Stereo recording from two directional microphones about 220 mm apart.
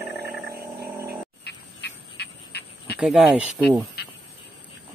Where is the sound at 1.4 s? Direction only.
50° left (ahead or behind).